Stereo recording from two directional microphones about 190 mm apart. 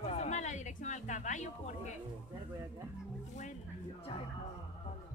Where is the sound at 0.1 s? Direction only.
35° left (ahead or behind).